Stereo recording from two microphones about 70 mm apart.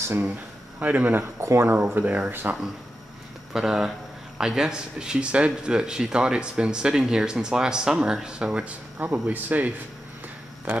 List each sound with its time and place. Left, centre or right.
0.7 s speech: right
1.4 s speech: right
3.5 s speech: centre
8.9 s speech: right